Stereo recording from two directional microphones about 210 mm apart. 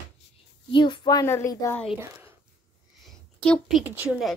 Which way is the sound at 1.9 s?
10° right (ahead or behind).